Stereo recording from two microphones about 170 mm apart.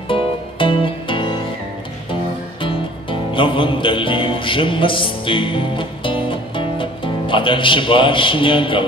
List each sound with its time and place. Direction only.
0.1 s music: 30° left (ahead or behind)
2.6 s music: 30° left (ahead or behind)